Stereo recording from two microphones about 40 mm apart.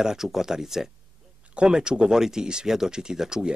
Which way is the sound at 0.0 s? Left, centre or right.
Centre.